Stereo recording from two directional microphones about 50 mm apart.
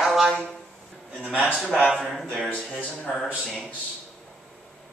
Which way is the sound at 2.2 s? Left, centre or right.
Centre.